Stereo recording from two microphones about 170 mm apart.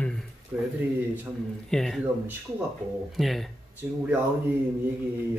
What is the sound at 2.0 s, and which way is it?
Speech, 10° right (ahead or behind).